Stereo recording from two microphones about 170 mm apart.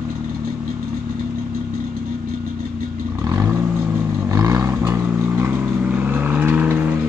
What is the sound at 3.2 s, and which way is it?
Vehicle, 20° right (ahead or behind).